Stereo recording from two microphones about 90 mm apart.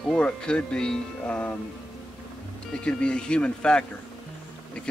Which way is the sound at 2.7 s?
10° left (ahead or behind).